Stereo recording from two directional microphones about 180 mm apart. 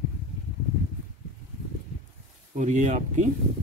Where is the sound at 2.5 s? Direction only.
45° right (ahead or behind).